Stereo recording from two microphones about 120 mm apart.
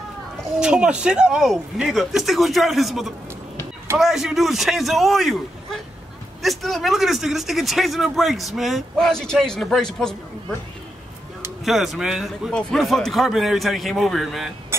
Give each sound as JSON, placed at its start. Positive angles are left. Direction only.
{"t": 0.6, "sound": "speech", "side_deg": -5}
{"t": 11.6, "sound": "speech", "side_deg": 0}
{"t": 14.7, "sound": "speech", "side_deg": -20}